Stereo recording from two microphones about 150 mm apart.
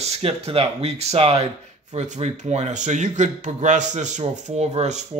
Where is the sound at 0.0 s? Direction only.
40° right (ahead or behind).